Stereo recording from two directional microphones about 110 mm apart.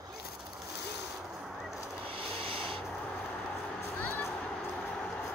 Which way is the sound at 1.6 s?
Centre (ahead or behind).